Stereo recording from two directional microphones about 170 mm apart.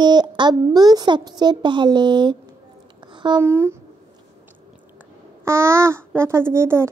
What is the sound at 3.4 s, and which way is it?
Speech, 15° right (ahead or behind).